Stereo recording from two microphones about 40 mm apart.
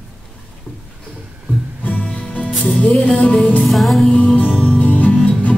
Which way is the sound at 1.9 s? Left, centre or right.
Left.